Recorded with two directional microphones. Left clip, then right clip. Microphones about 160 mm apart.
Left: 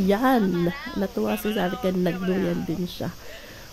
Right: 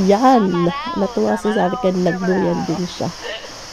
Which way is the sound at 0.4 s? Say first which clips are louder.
Right 7 dB; 10° left (ahead or behind).